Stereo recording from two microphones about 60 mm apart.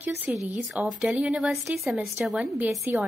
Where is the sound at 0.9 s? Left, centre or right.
Centre.